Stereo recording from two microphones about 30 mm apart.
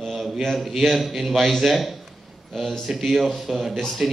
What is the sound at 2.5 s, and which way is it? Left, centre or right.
Speech, centre.